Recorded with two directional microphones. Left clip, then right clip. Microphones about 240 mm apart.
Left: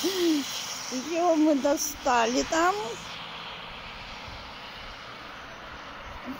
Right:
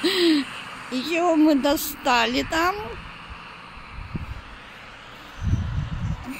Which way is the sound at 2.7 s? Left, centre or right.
Left.